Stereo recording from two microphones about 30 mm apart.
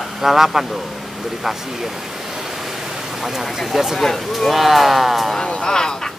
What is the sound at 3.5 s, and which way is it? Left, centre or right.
Speech, centre.